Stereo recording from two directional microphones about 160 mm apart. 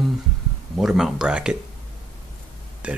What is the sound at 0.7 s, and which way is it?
Speech, centre (ahead or behind).